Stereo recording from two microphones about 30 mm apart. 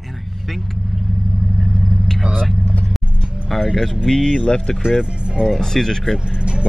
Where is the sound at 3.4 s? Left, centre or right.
Centre.